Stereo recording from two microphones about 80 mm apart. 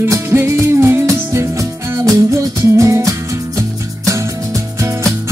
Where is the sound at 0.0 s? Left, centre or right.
Right.